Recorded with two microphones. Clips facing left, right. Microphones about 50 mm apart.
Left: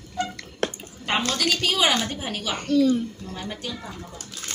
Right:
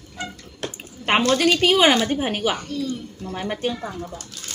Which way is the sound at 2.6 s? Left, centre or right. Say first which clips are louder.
Left 8 dB; left.